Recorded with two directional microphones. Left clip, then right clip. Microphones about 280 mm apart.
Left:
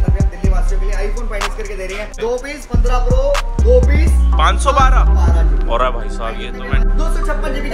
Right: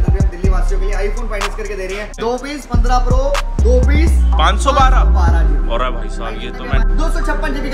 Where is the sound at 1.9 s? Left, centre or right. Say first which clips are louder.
Even; centre.